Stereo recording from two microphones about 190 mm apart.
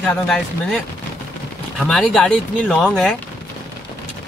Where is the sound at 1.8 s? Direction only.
Centre (ahead or behind).